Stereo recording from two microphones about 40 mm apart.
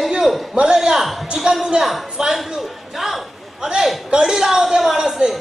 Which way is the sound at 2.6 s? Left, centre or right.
Centre.